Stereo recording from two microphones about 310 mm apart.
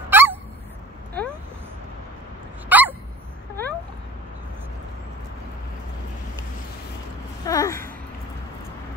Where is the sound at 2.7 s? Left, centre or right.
Centre.